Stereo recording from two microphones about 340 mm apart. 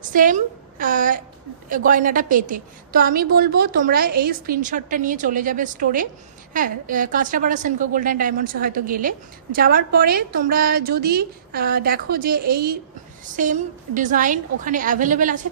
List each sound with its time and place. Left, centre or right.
0.0 s a woman's voice: right